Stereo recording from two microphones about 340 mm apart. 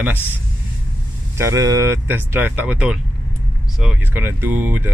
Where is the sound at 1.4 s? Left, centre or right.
Centre.